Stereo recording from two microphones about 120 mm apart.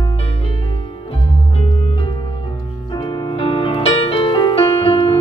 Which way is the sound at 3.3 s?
45° left (ahead or behind).